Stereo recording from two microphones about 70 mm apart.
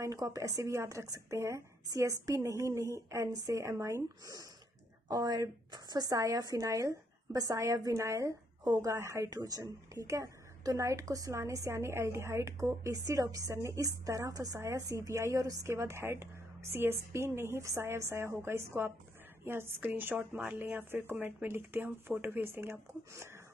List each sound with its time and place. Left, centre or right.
0.1 s a woman's voice: right
3.3 s speech: right
3.6 s a woman's voice: right
5.0 s a woman's voice: right
9.3 s a woman's voice: right
15.7 s a woman's voice: right